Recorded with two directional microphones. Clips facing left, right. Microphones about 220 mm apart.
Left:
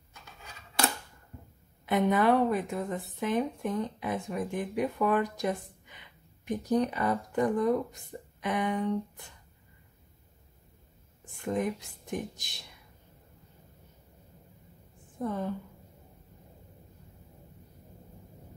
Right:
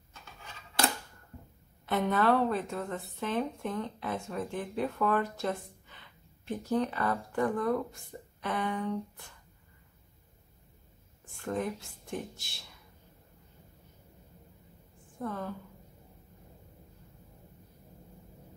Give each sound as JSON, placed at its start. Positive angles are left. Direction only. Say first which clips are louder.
{"t": 1.9, "sound": "speech", "louder": "left 3 dB", "side_deg": 15}
{"t": 11.3, "sound": "speech", "louder": "left 3 dB", "side_deg": 15}
{"t": 15.1, "sound": "a woman's voice", "louder": "left 4 dB", "side_deg": 20}